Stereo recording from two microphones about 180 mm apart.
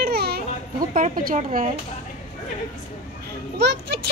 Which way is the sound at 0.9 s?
50° right (ahead or behind).